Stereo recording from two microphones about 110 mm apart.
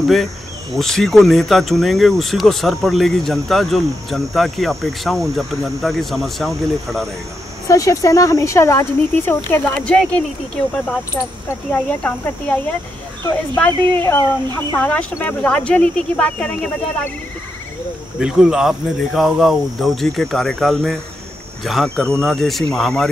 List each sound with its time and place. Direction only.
0.0 s speech: centre (ahead or behind)
7.6 s speech: 30° left (ahead or behind); by 10.2 s 10° left (ahead or behind)
11.2 s speech: 25° left (ahead or behind)
11.7 s speech: 10° left (ahead or behind)
13.6 s speech: 25° left (ahead or behind)
14.8 s speech: 10° left (ahead or behind)
18.2 s speech: 5° right (ahead or behind)